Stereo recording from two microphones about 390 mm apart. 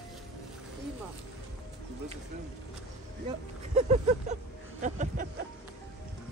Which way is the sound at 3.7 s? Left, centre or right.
Centre.